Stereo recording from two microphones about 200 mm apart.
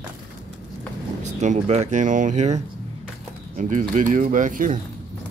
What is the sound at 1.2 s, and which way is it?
Speech, 35° right (ahead or behind).